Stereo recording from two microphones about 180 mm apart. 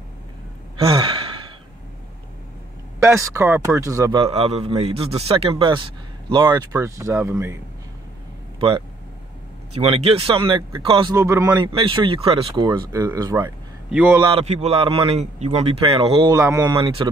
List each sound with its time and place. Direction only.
0.7 s sigh: 30° right (ahead or behind)
3.0 s speech: 15° right (ahead or behind)
4.2 s a man's voice: 35° right (ahead or behind); by 7.5 s 15° right (ahead or behind)
8.5 s speech: 30° right (ahead or behind)
11.1 s speech: 15° right (ahead or behind)
13.9 s speech: 10° right (ahead or behind)
14.2 s a man's voice: 35° right (ahead or behind)
16.3 s speech: 20° right (ahead or behind)
16.7 s speech: 30° right (ahead or behind)